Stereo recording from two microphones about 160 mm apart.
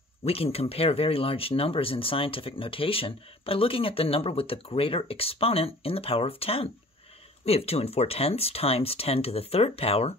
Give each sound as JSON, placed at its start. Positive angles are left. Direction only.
{"t": 0.2, "sound": "speech", "side_deg": 40}